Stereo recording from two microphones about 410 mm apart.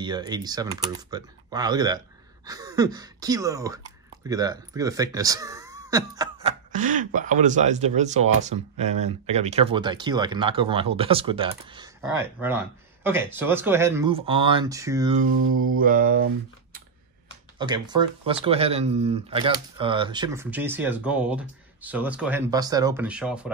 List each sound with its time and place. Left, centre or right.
0.0 s speech: centre
15.3 s mantra: right
15.8 s mantra: centre
17.6 s speech: centre